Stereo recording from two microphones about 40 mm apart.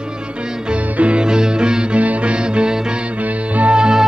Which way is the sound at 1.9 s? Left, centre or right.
Right.